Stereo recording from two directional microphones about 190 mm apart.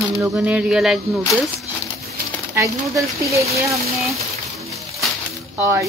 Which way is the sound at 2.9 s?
15° right (ahead or behind).